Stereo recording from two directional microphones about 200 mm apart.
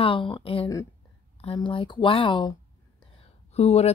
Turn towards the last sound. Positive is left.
turn(degrees=30)  # may be behind; listen again after turning